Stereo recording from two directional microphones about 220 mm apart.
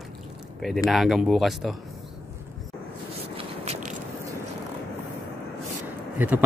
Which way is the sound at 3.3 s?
30° right (ahead or behind).